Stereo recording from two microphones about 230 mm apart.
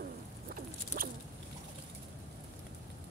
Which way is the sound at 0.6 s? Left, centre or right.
Right.